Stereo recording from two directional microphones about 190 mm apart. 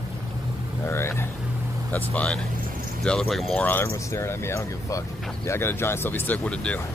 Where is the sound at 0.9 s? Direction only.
15° left (ahead or behind).